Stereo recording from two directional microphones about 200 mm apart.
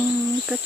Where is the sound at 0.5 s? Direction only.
10° right (ahead or behind).